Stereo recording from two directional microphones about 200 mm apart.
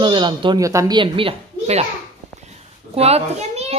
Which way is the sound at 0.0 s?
25° right (ahead or behind).